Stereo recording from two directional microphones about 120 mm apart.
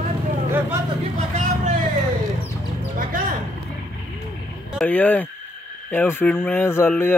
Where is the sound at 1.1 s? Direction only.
85° right.